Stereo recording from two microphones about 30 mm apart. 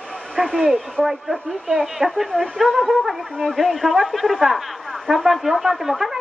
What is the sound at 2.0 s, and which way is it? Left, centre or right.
Speech, right.